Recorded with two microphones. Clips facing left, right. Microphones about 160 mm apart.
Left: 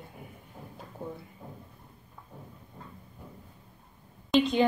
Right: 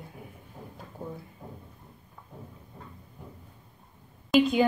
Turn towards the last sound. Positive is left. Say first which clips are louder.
# right 2 dB
turn(degrees=-5)  # may be behind; listen again after turning